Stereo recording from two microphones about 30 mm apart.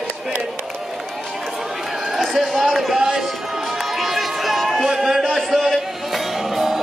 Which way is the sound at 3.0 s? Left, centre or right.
Centre.